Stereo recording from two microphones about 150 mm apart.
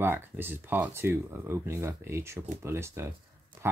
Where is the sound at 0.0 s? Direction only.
15° right (ahead or behind).